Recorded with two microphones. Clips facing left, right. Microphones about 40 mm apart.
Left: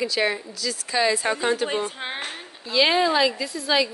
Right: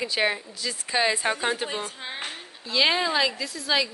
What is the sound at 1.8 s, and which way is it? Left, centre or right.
Speech, left.